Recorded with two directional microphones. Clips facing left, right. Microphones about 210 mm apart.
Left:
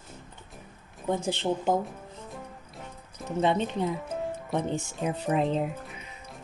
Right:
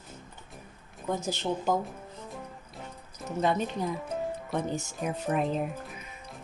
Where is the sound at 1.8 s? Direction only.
Centre (ahead or behind).